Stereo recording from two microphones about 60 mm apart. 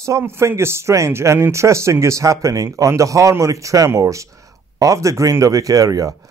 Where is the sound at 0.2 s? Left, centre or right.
Right.